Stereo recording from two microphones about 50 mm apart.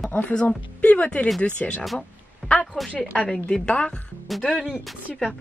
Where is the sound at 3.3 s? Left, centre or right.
Centre.